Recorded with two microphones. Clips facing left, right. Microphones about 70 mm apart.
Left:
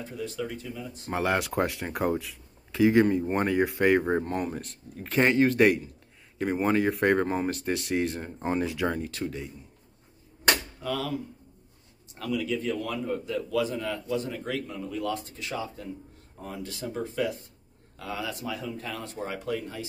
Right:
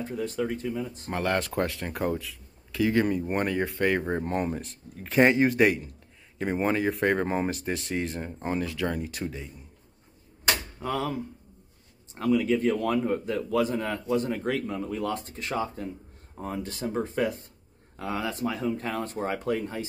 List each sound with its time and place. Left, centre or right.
0.0 s speech: right
1.1 s speech: centre
2.7 s speech: centre
4.5 s speech: centre
5.2 s speech: centre
8.5 s speech: centre
9.2 s speech: centre
10.8 s speech: right
12.2 s speech: right